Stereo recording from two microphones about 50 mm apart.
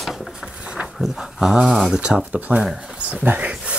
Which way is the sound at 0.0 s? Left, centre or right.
Centre.